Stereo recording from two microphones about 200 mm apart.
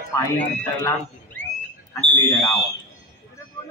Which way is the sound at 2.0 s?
10° left (ahead or behind).